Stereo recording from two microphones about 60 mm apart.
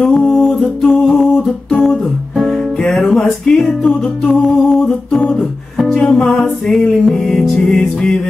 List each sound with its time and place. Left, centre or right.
0.0 s music: centre
2.8 s music: centre